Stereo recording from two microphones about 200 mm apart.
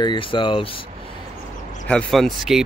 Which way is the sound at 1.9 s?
5° left (ahead or behind).